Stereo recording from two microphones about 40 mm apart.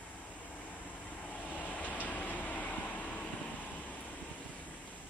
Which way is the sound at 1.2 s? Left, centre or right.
Left.